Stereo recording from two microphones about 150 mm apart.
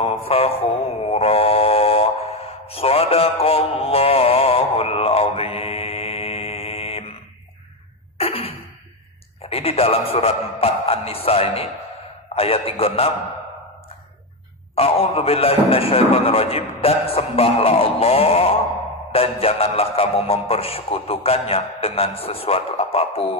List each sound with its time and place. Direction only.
0.0 s mantra: 40° left (ahead or behind)
8.2 s a sound: 40° left (ahead or behind)
9.4 s a man's voice: 40° left (ahead or behind)
14.8 s a man's voice: 40° left (ahead or behind)